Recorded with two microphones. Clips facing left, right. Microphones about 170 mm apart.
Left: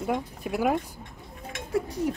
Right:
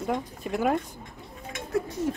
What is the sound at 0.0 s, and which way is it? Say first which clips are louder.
Speech: left 1 dB; 5° left (ahead or behind).